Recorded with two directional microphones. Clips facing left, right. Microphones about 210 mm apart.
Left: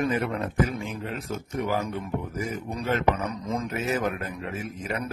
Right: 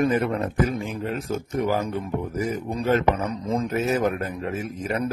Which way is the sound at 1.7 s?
35° right (ahead or behind).